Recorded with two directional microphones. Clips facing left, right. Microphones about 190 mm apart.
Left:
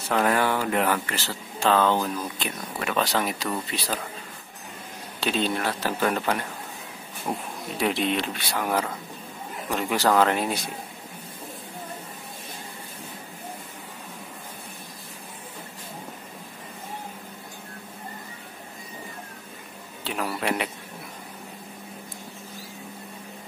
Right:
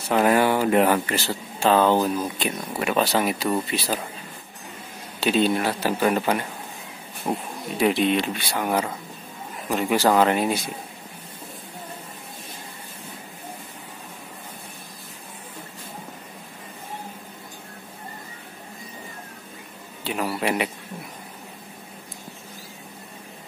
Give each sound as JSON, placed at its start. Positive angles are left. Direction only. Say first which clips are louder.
{"t": 0.1, "sound": "speech", "louder": "right 4 dB", "side_deg": -15}
{"t": 5.2, "sound": "speech", "louder": "right 5 dB", "side_deg": -5}
{"t": 20.0, "sound": "speech", "louder": "right 3 dB", "side_deg": -5}